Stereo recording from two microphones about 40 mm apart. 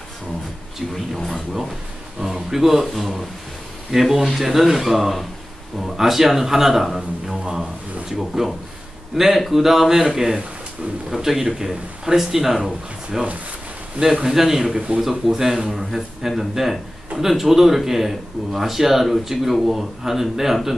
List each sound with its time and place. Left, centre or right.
0.7 s speech: centre
2.1 s speech: centre
13.9 s speech: centre